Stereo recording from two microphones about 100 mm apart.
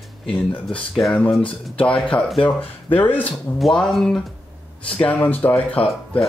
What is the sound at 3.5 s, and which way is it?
Speech, 5° left (ahead or behind).